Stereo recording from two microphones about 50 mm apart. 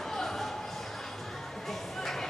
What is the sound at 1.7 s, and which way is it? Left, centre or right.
Music, centre.